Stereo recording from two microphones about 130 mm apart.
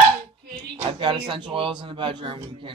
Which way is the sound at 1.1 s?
35° right (ahead or behind).